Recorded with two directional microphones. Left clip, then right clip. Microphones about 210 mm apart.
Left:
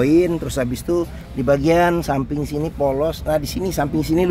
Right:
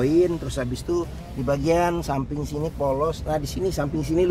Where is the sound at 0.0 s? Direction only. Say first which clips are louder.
Left 4 dB; 45° left (ahead or behind).